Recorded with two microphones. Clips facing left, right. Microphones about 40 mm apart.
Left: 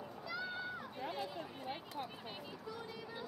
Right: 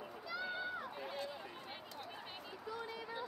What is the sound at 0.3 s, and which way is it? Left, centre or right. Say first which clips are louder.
Run: right 1 dB; centre.